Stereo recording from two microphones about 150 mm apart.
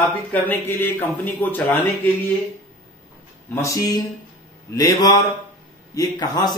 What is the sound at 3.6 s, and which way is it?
A man's voice, 20° left (ahead or behind).